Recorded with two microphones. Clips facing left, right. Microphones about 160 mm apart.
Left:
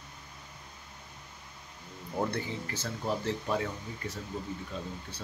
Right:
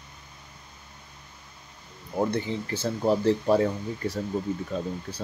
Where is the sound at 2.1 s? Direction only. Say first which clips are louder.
Right 6 dB; 20° right (ahead or behind).